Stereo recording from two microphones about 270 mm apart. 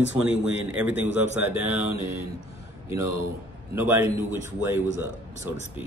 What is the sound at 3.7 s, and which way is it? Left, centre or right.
A man's voice, centre.